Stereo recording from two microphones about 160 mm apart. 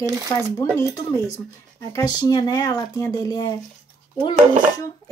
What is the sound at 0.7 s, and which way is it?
Speech, 15° left (ahead or behind).